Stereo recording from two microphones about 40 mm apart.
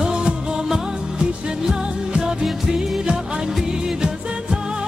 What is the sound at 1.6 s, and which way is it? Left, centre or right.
Music, centre.